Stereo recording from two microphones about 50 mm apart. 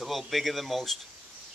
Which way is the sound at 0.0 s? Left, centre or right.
Centre.